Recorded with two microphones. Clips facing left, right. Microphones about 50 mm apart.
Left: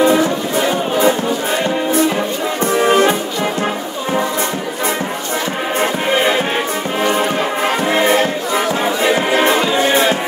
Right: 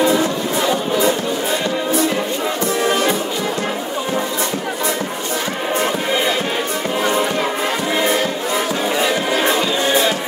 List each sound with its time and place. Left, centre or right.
0.0 s music: left
2.6 s music: left
5.8 s music: left